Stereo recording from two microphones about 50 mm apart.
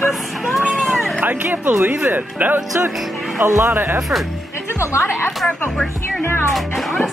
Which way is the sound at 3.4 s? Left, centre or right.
Right.